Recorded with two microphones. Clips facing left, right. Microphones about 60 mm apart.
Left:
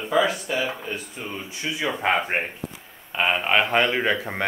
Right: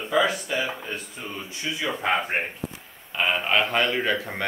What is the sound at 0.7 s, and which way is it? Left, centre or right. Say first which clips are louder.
Speech: left 2 dB; centre.